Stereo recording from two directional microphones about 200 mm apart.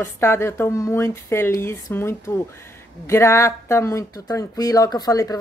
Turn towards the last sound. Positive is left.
turn(degrees=15)  # may be behind; listen again after turning